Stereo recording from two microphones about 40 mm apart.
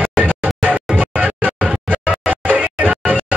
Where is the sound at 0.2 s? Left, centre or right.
Right.